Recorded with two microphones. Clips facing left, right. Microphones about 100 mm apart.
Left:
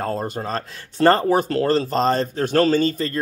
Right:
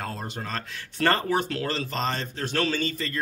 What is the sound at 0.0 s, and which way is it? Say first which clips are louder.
Speech: left 9 dB; 40° left (ahead or behind).